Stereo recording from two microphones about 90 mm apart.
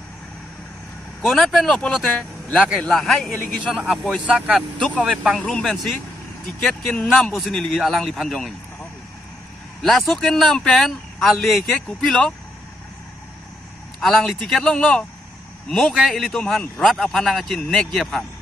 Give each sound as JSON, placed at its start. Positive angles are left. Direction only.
{"t": 1.2, "sound": "speech", "side_deg": 5}
{"t": 5.4, "sound": "a man's voice", "side_deg": 5}
{"t": 9.8, "sound": "speech", "side_deg": 0}
{"t": 13.9, "sound": "speech", "side_deg": 0}